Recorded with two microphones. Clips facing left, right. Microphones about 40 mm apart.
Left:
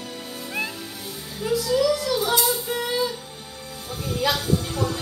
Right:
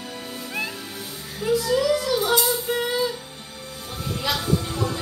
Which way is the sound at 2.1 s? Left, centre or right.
Centre.